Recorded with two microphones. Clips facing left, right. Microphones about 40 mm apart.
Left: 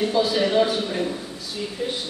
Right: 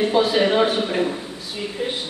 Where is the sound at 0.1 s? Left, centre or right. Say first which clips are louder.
Right 3 dB; right.